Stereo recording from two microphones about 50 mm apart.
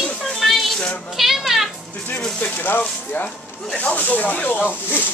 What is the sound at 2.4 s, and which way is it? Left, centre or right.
Speech, left.